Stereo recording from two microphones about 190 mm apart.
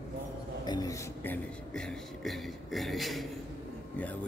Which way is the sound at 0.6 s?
20° left (ahead or behind).